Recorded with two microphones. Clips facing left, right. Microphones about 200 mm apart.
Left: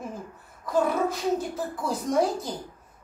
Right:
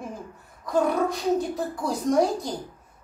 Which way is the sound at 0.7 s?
5° left (ahead or behind).